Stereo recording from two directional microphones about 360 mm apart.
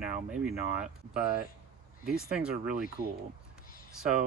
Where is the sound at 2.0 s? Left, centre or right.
Centre.